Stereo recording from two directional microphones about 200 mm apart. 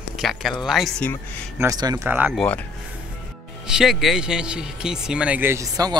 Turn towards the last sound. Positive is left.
turn(degrees=-15)  # may be behind; listen again after turning